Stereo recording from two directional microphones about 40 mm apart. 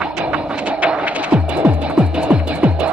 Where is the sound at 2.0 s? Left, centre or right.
Centre.